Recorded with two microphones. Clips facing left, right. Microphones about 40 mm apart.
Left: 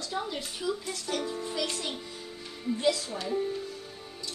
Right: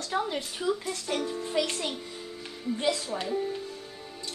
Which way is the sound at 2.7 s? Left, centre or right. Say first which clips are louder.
Left 1 dB; right.